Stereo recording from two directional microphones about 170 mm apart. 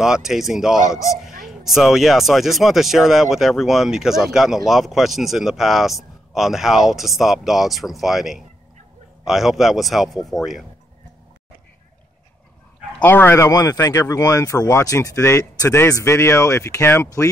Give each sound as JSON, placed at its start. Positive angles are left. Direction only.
{"t": 0.0, "sound": "speech", "side_deg": 0}
{"t": 13.0, "sound": "speech", "side_deg": 10}